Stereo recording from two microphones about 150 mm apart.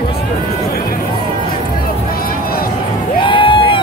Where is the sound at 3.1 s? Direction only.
35° left (ahead or behind).